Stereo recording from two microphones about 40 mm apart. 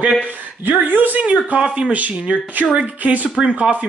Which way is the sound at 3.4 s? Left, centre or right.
Right.